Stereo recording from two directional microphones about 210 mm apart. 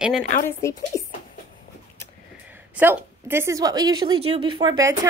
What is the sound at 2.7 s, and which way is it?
A woman's voice, 10° right (ahead or behind).